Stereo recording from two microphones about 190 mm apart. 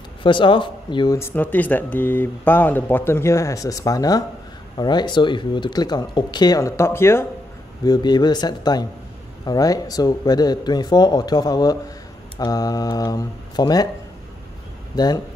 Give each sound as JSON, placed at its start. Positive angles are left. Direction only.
{"t": 0.2, "sound": "speech", "side_deg": 25}
{"t": 14.9, "sound": "speech", "side_deg": 20}